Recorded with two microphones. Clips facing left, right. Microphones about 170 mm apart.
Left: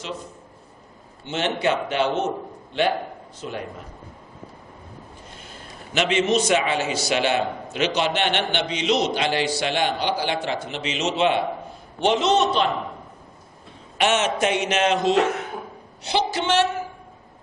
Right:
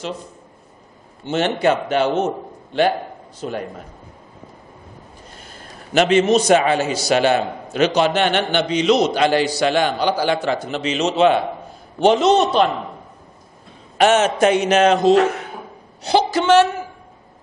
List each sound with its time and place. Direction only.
1.2 s a man's voice: 45° right (ahead or behind)
5.5 s a man's voice: 45° right (ahead or behind)
13.9 s a man's voice: 40° right (ahead or behind)